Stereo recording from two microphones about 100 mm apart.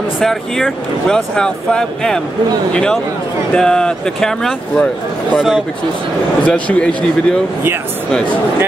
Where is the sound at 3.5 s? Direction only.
10° left (ahead or behind).